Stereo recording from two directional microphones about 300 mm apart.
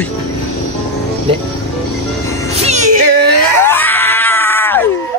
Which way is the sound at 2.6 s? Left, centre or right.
Right.